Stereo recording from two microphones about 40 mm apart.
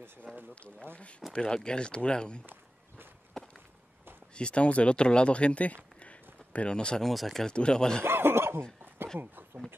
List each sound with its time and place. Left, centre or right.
0.3 s speech: centre
2.4 s walk: right
4.4 s speech: left
7.0 s speech: centre
7.4 s speech: left
8.0 s speech: right
9.2 s speech: right